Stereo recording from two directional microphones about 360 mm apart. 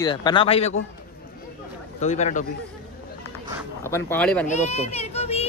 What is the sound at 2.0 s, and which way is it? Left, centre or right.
Speech, centre.